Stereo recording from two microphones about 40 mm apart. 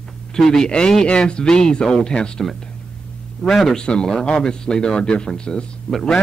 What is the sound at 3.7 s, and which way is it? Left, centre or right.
Speech, left.